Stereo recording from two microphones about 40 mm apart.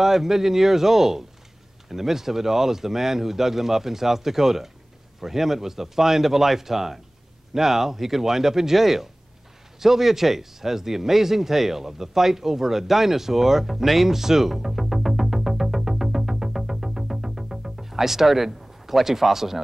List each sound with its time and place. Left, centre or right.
0.0 s speech: centre